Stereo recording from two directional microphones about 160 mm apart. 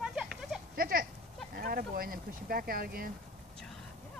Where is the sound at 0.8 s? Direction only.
65° right (ahead or behind).